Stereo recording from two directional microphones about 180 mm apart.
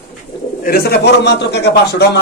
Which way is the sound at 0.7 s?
65° left (ahead or behind).